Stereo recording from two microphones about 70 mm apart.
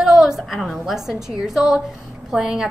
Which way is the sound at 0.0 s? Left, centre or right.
Centre.